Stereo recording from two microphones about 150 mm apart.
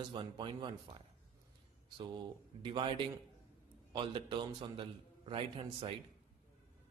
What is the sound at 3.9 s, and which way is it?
A man's voice, 30° right (ahead or behind).